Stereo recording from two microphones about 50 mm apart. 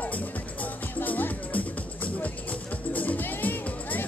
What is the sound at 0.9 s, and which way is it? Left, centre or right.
Music, left.